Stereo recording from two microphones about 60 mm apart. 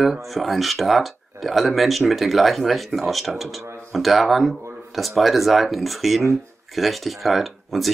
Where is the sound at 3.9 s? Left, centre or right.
Centre.